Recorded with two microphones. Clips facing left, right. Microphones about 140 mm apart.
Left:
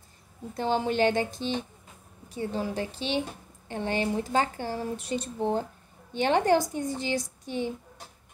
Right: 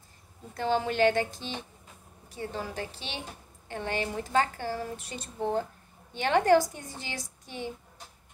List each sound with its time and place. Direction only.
0.6 s speech: 20° left (ahead or behind)